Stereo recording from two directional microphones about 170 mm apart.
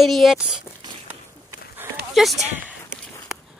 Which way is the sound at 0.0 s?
Centre (ahead or behind).